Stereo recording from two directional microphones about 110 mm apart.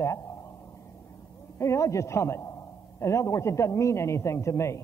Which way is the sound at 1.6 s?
25° left (ahead or behind).